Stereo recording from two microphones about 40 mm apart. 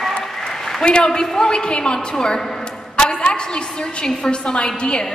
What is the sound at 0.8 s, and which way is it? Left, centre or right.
A woman's voice, left.